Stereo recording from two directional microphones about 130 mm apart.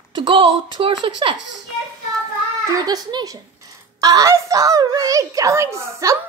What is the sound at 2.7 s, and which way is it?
A child's voice, 30° right (ahead or behind).